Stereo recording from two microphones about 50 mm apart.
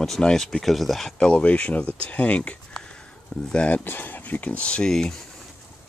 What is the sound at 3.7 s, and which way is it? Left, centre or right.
Speech, left.